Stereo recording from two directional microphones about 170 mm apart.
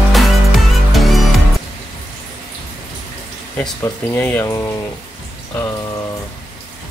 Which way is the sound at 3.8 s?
10° left (ahead or behind).